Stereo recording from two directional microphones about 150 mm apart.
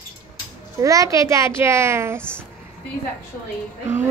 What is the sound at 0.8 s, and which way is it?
A child's voice, 20° right (ahead or behind).